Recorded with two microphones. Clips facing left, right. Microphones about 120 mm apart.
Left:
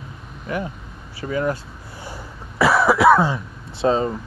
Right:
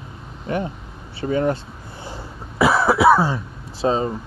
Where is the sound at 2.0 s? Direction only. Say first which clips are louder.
Right 1 dB; 20° right (ahead or behind).